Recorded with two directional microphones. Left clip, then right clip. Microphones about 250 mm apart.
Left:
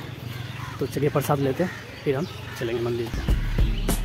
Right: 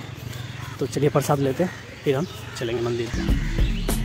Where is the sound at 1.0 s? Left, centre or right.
Centre.